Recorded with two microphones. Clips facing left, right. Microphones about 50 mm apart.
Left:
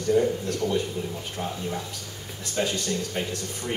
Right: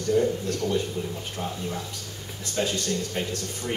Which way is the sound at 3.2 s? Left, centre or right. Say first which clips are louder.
Even; centre.